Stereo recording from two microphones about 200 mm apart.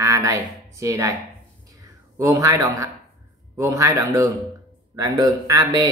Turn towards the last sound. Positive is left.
turn(degrees=-15)  # may be behind; listen again after turning